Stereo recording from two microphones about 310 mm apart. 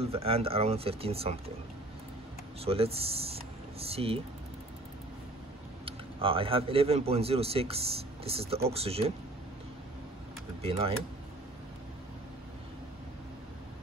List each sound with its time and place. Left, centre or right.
0.0 s a man's voice: centre
2.6 s speech: centre
5.9 s a man's voice: centre
10.6 s speech: centre